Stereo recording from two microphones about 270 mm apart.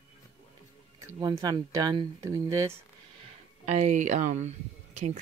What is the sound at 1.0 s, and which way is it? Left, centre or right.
Speech, centre.